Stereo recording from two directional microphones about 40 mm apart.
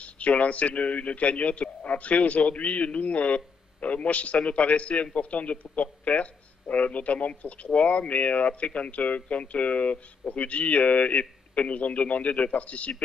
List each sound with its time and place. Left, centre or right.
0.0 s speech: left